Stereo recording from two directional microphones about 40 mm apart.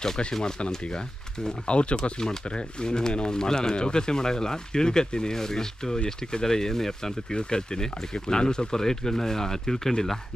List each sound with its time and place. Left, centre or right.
0.3 s speech: centre